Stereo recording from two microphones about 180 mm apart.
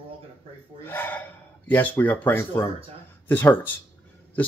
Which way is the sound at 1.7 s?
10° left (ahead or behind).